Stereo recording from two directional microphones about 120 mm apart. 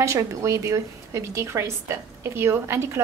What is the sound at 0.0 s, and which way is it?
A woman's voice, 25° right (ahead or behind).